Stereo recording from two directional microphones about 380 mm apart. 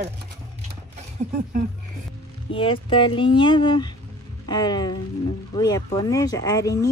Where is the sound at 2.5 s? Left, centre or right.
Centre.